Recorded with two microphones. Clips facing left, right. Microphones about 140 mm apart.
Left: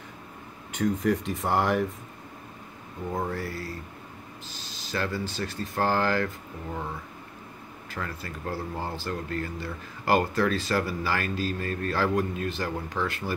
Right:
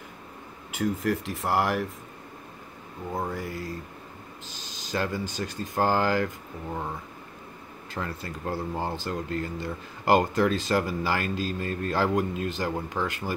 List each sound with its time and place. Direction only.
0.7 s speech: 5° right (ahead or behind)
3.1 s speech: 10° right (ahead or behind)
7.9 s speech: 25° right (ahead or behind)